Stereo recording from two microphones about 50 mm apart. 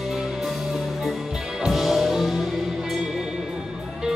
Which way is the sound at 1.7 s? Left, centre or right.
Centre.